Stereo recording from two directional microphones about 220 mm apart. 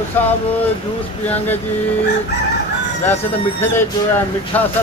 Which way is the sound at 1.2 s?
10° left (ahead or behind).